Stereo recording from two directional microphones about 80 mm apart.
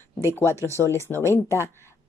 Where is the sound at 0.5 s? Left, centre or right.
Right.